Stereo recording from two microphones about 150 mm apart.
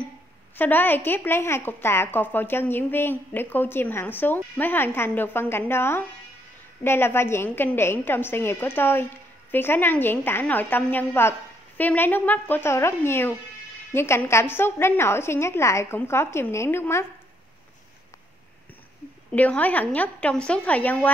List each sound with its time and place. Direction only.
0.6 s a woman's voice: 10° left (ahead or behind)
19.3 s a woman's voice: 10° left (ahead or behind)